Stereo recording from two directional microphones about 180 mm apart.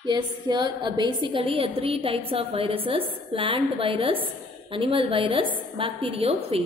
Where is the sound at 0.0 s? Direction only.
25° right (ahead or behind).